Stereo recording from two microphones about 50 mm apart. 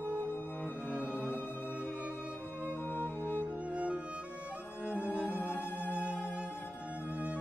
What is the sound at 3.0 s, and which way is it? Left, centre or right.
Music, right.